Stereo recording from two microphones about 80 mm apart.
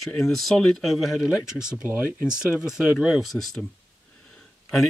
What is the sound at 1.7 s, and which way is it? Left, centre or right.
Speech, right.